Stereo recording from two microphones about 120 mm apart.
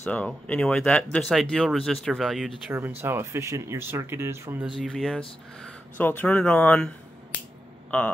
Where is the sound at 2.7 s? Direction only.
15° right (ahead or behind).